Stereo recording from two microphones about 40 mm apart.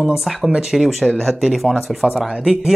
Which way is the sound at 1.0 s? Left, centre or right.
Centre.